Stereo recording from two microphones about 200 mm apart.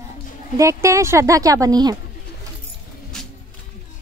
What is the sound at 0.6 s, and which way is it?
Speech, 15° right (ahead or behind).